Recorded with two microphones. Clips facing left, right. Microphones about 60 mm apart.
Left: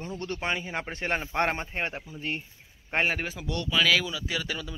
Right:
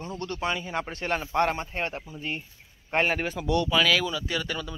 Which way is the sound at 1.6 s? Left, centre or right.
Centre.